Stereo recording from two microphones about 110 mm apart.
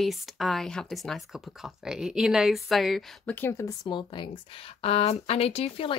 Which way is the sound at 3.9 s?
45° left (ahead or behind).